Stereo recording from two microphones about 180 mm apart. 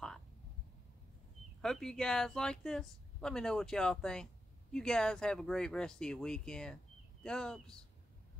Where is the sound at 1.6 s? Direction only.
5° left (ahead or behind).